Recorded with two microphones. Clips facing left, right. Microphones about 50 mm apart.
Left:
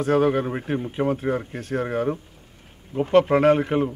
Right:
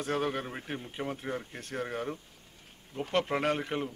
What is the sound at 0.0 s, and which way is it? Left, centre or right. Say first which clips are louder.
Speech: left 12 dB; centre.